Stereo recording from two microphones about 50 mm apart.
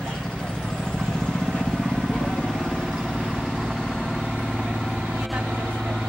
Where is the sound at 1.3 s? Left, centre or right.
Centre.